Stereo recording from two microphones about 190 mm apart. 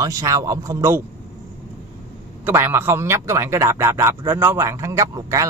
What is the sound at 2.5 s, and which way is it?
A man's voice, 10° right (ahead or behind).